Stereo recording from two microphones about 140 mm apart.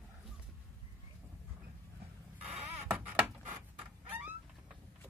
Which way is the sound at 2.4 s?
10° right (ahead or behind).